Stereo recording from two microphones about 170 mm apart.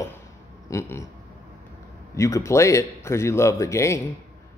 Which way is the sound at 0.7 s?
15° left (ahead or behind).